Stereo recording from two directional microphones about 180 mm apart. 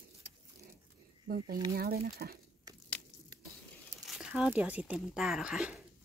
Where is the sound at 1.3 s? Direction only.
55° right (ahead or behind).